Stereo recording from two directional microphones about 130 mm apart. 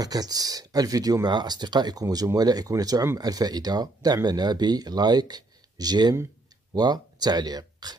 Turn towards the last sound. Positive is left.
turn(degrees=-30)  # may be behind; listen again after turning